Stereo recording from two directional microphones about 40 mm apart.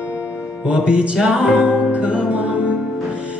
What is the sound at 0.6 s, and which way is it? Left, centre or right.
Music, right.